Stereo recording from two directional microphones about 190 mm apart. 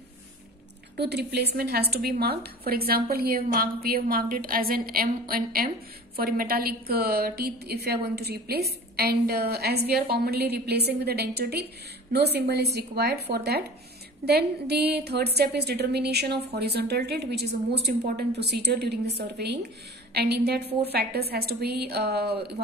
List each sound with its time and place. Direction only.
0.9 s a woman's voice: 60° right (ahead or behind)